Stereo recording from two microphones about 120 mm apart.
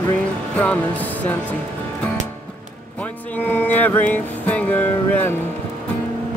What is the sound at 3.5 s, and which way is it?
Music, 15° left (ahead or behind).